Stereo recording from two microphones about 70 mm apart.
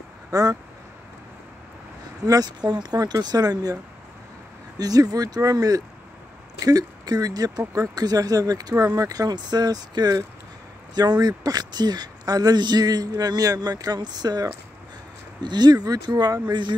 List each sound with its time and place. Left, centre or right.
0.3 s speech: right
2.2 s speech: right
4.7 s speech: right
15.4 s speech: right